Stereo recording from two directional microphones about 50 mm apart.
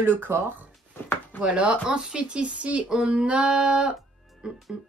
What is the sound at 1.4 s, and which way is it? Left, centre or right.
Speech, right.